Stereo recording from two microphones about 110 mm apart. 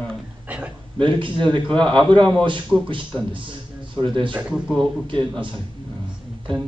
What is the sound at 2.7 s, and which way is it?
Speech, 10° right (ahead or behind).